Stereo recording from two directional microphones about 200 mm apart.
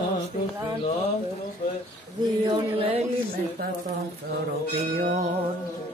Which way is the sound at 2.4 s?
25° right (ahead or behind).